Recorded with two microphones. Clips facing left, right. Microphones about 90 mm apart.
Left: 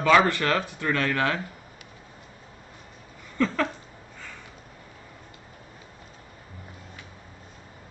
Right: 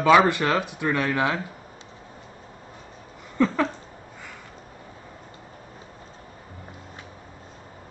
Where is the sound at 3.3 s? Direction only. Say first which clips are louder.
Right 3 dB; 15° right (ahead or behind).